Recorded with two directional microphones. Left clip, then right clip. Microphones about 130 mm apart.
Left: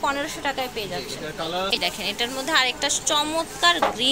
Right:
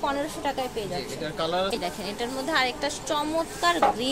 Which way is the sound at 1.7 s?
15° right (ahead or behind).